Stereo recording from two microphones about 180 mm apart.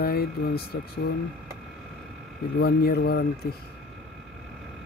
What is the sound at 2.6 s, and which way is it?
Speech, 60° left (ahead or behind).